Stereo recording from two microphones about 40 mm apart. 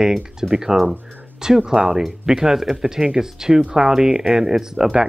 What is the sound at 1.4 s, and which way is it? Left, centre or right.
Speech, centre.